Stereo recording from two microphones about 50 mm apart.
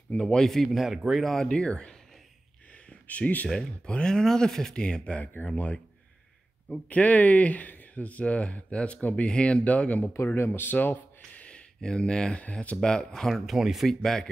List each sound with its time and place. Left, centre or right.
0.1 s speech: left
0.4 s a man's voice: centre
1.2 s speech: centre
1.7 s speech: centre
2.7 s a sound: left
3.4 s speech: centre
4.7 s speech: left
10.2 s speech: left
11.8 s speech: centre
12.8 s speech: centre
13.3 s a man's voice: centre
13.8 s speech: centre